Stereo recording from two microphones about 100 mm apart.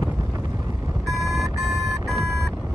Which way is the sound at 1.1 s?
35° right (ahead or behind).